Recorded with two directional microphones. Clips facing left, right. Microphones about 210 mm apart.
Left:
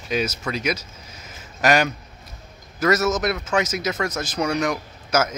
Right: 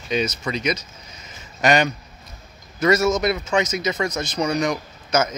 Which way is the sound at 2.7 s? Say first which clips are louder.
Right 2 dB; 5° left (ahead or behind).